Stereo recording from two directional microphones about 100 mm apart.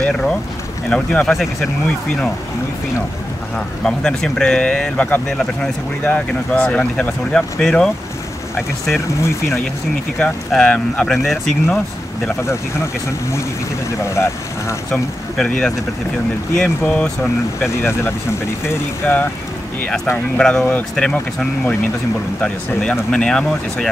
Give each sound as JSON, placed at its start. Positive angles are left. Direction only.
{"t": 0.0, "sound": "speech", "side_deg": 10}
{"t": 3.5, "sound": "speech", "side_deg": 5}
{"t": 10.1, "sound": "speech", "side_deg": 10}
{"t": 14.0, "sound": "speech", "side_deg": 30}
{"t": 14.9, "sound": "speech", "side_deg": 5}
{"t": 20.3, "sound": "speech", "side_deg": 10}